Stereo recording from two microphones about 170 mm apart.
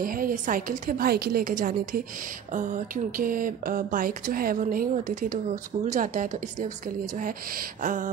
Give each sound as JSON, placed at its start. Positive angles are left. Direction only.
{"t": 0.0, "sound": "a woman's voice", "side_deg": -55}